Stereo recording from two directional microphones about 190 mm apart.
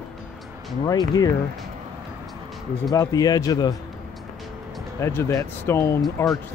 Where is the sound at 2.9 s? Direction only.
20° left (ahead or behind).